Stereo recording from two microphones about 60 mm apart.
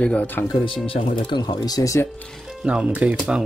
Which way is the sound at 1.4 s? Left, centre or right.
Left.